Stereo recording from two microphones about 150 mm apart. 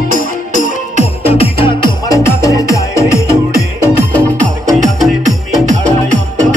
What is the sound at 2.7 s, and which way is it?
Music, 20° left (ahead or behind).